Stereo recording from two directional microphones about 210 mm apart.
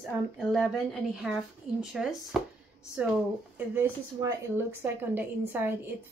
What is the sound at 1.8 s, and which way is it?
Speech, centre (ahead or behind).